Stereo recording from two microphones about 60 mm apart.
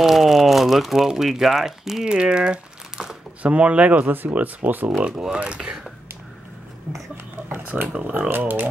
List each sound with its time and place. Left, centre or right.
0.0 s speech: centre; by 4.9 s right
5.0 s speech: centre
7.4 s a sound: right
8.0 s speech: right